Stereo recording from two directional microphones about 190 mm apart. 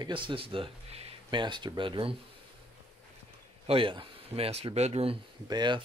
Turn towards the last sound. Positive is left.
turn(degrees=-25)  # may be behind; listen again after turning